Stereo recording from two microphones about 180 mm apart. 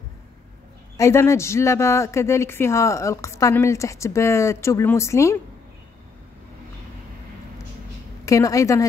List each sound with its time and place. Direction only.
0.9 s a man's voice: 15° left (ahead or behind)
8.3 s a man's voice: 20° left (ahead or behind)